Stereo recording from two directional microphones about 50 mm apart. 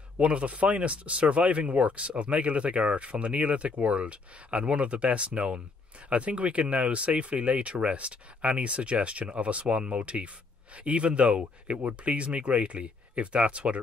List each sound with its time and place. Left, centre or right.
0.2 s speech: right